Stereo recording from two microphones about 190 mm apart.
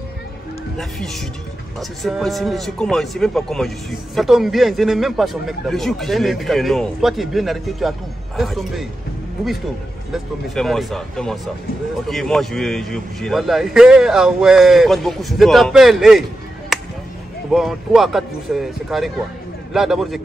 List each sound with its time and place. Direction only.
0.7 s speech: centre (ahead or behind)
10.1 s speech: centre (ahead or behind)